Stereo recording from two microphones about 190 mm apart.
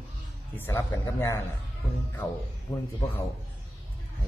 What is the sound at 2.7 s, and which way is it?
Speech, 20° left (ahead or behind).